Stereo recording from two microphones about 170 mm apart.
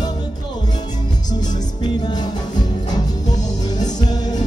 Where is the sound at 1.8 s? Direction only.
25° left (ahead or behind).